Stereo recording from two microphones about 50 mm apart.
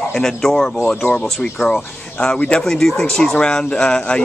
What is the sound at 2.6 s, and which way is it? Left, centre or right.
Speech, centre.